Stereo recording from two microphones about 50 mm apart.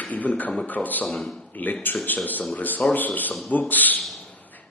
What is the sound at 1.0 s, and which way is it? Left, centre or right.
Speech, centre.